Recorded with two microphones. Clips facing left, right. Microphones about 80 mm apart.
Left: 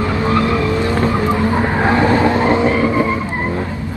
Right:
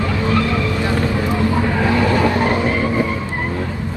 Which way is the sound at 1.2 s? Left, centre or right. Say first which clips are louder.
Left 2 dB; left.